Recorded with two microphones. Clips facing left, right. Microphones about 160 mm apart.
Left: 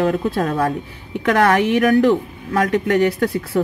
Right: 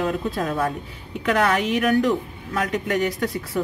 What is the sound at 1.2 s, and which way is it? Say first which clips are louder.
Speech: left 5 dB; 65° left (ahead or behind).